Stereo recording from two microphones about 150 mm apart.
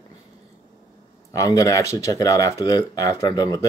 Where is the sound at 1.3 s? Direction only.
20° left (ahead or behind).